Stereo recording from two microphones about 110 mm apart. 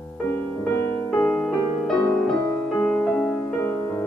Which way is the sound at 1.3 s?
5° left (ahead or behind).